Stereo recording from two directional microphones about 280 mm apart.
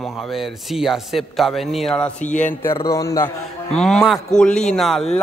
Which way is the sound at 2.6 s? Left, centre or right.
Centre.